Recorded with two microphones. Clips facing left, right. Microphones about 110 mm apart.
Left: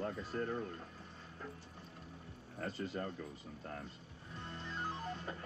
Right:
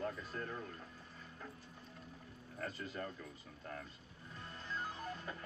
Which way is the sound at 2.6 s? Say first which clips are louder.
Left 3 dB; 30° left (ahead or behind).